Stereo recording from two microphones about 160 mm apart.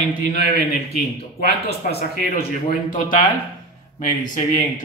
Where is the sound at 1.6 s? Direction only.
80° left.